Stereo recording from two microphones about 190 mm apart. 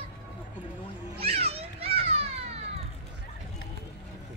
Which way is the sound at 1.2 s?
30° right (ahead or behind).